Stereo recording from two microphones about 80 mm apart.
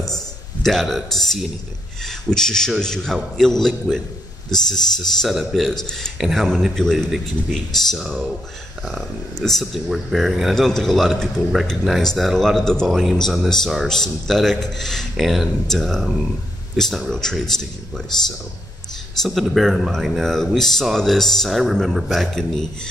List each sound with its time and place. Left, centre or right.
0.0 s a man's voice: centre
19.2 s speech: centre